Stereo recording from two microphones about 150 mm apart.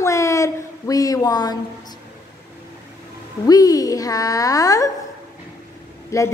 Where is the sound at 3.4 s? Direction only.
25° left (ahead or behind).